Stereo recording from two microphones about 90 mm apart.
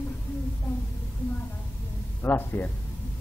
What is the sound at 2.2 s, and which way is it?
Speech, 25° left (ahead or behind).